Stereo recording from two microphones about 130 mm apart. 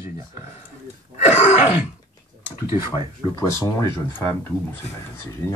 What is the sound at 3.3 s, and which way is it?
Speech, 25° left (ahead or behind).